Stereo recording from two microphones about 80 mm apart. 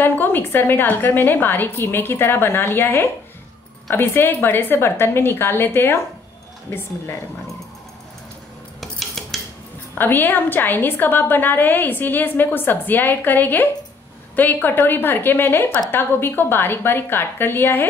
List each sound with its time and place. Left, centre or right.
0.0 s a woman's voice: left
8.8 s cutlery: centre
9.9 s a woman's voice: left